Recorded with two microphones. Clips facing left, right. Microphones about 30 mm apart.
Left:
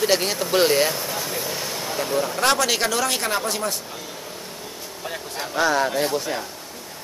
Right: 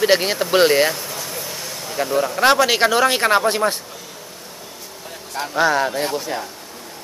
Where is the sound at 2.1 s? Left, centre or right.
Centre; by 3.7 s right.